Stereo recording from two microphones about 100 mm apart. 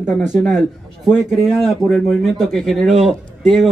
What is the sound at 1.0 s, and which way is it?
A man's voice, 5° right (ahead or behind).